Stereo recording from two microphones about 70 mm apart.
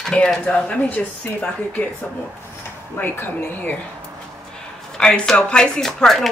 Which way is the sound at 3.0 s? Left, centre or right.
Left.